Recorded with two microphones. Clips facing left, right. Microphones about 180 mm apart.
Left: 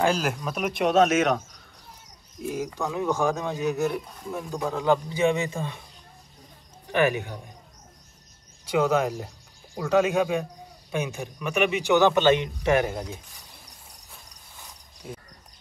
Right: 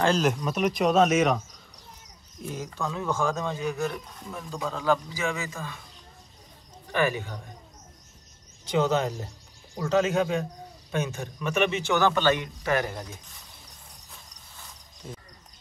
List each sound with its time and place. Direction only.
0.0 s speech: 5° left (ahead or behind)
2.4 s a man's voice: 10° left (ahead or behind)
6.9 s a man's voice: 15° left (ahead or behind)
10.0 s a man's voice: 15° left (ahead or behind)
15.0 s cricket: 10° left (ahead or behind)